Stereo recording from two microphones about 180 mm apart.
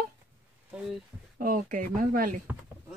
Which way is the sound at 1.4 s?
50° right (ahead or behind).